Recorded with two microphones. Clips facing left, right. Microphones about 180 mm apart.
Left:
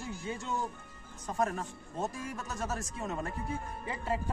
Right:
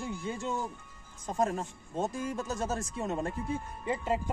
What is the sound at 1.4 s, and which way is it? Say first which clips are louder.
Speech: right 2 dB; 25° right (ahead or behind).